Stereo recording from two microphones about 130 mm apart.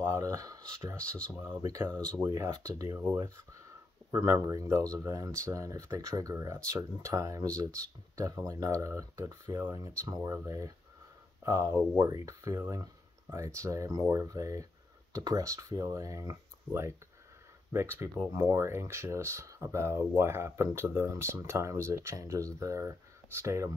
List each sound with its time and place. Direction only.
0.0 s speech: 25° right (ahead or behind)
0.9 s speech: 10° left (ahead or behind)
1.3 s speech: 15° right (ahead or behind)